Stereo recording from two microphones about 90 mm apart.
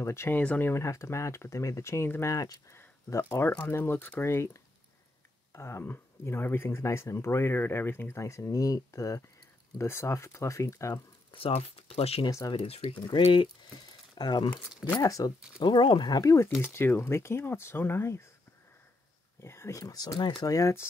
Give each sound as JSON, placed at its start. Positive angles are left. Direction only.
{"t": 0.0, "sound": "speech", "side_deg": 30}
{"t": 2.3, "sound": "speech", "side_deg": 40}
{"t": 2.7, "sound": "speech", "side_deg": 30}
{"t": 5.5, "sound": "speech", "side_deg": 30}
{"t": 11.3, "sound": "speech", "side_deg": 90}
{"t": 12.3, "sound": "speech", "side_deg": 40}
{"t": 12.5, "sound": "speech", "side_deg": 90}
{"t": 13.0, "sound": "speech", "side_deg": 65}
{"t": 15.0, "sound": "speech", "side_deg": 40}
{"t": 15.6, "sound": "speech", "side_deg": 60}
{"t": 16.2, "sound": "speech", "side_deg": 40}
{"t": 16.7, "sound": "speech", "side_deg": 25}
{"t": 19.4, "sound": "speech", "side_deg": 30}